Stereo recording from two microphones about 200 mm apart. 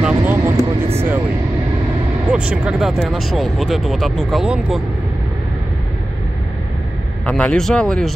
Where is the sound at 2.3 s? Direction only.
5° right (ahead or behind).